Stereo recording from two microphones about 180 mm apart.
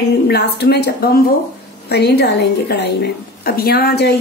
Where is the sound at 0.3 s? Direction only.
65° left (ahead or behind).